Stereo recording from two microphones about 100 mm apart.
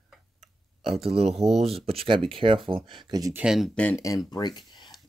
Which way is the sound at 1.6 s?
80° right.